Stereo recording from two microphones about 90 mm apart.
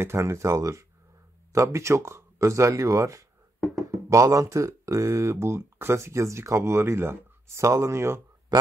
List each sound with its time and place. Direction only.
0.0 s speech: 30° right (ahead or behind)